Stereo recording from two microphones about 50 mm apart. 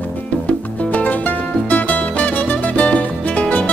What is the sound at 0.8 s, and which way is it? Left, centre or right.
Music, left.